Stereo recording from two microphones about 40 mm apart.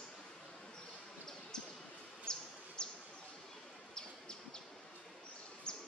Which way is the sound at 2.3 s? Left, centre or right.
Centre.